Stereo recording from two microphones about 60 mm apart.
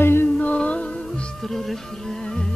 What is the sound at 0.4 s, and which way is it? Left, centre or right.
Music, left.